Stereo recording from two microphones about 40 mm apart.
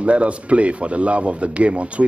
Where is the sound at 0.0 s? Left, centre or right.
Right.